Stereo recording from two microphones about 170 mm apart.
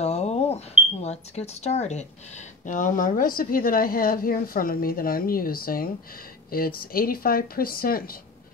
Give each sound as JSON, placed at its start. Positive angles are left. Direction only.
{"t": 0.0, "sound": "smoke detector", "side_deg": 40}
{"t": 1.0, "sound": "a woman's voice", "side_deg": 40}